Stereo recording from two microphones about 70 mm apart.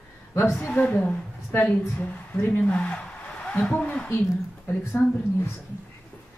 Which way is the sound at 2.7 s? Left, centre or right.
Centre.